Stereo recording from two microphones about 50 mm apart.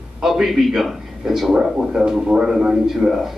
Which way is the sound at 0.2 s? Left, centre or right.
Centre.